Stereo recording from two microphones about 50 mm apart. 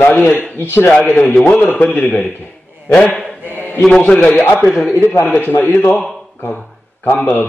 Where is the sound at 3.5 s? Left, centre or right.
Left.